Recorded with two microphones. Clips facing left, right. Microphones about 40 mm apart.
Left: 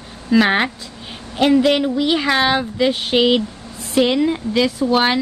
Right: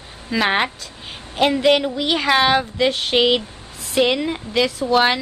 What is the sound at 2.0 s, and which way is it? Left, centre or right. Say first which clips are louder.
A woman's voice: left 1 dB; centre.